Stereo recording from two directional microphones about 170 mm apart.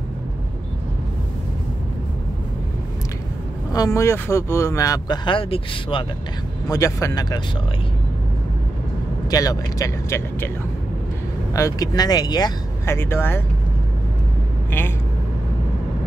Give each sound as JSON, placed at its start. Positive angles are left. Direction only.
{"t": 3.7, "sound": "speech", "side_deg": 20}
{"t": 6.7, "sound": "speech", "side_deg": 20}
{"t": 9.3, "sound": "speech", "side_deg": 20}
{"t": 11.5, "sound": "speech", "side_deg": 20}